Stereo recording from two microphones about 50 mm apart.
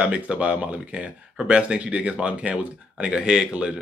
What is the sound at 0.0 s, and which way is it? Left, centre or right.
Speech, right.